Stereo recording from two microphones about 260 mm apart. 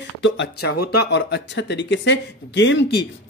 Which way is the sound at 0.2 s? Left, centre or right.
Left.